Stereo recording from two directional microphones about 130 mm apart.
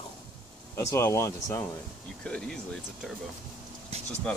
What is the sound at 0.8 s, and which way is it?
Speech, 20° left (ahead or behind).